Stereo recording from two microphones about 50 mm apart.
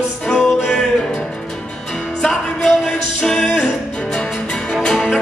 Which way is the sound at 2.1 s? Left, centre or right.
Centre.